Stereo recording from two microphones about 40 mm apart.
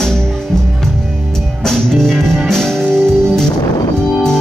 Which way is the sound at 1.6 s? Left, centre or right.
Centre.